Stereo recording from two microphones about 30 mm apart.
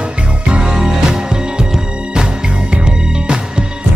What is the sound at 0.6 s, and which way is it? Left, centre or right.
Music, centre.